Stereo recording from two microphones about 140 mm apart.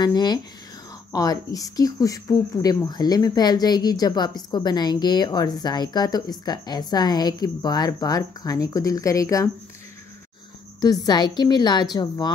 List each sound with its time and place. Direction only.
0.0 s speech: 30° left (ahead or behind)
10.8 s a woman's voice: 30° left (ahead or behind)